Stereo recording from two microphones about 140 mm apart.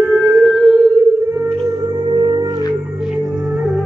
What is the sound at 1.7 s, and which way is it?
Music, 25° right (ahead or behind).